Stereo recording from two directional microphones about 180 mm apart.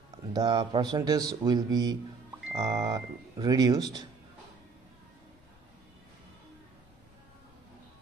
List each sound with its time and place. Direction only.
0.3 s speech: 25° right (ahead or behind)